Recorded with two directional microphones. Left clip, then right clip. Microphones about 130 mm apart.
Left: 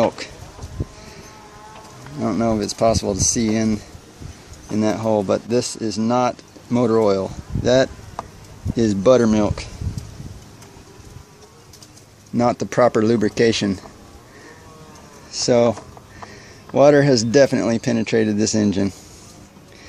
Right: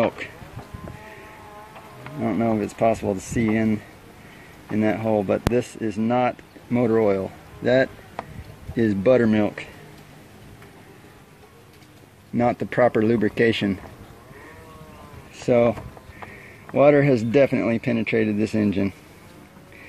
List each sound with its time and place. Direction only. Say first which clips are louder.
2.1 s speech: left 3 dB; 15° left (ahead or behind)
12.4 s speech: left 3 dB; 20° left (ahead or behind)
15.3 s speech: left 3 dB; 15° left (ahead or behind)